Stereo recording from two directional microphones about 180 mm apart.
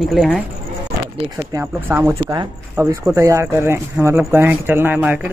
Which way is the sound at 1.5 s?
10° right (ahead or behind).